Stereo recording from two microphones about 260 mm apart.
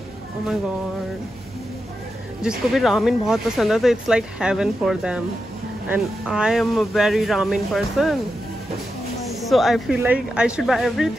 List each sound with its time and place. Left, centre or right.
2.4 s speech: centre
9.3 s speech: centre